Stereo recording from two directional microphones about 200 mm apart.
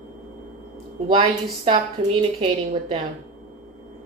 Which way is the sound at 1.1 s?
25° right (ahead or behind).